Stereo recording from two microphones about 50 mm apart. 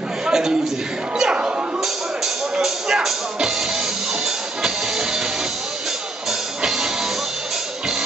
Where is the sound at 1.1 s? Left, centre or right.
Centre.